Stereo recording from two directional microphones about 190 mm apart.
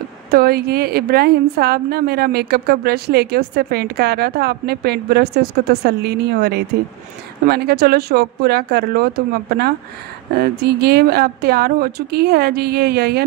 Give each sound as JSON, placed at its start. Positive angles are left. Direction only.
{"t": 0.3, "sound": "a woman's voice", "side_deg": -55}